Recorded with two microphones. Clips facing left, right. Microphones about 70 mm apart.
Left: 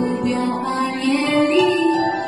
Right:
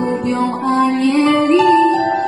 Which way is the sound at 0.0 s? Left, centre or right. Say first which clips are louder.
Right 3 dB; right.